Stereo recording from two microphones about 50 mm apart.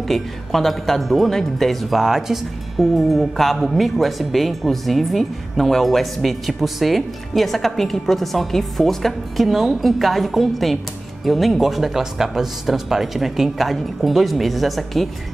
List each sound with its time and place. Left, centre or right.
0.1 s speech: centre